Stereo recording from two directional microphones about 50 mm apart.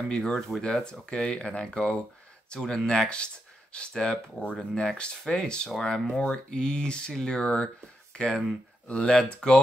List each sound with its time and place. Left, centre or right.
0.1 s speech: centre
0.6 s speech: centre
6.2 s speech: centre